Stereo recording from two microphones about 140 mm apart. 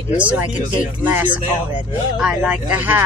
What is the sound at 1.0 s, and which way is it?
Speech, 10° right (ahead or behind).